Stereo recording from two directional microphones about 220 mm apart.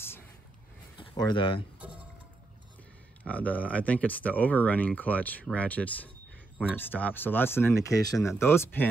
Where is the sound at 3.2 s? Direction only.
5° left (ahead or behind).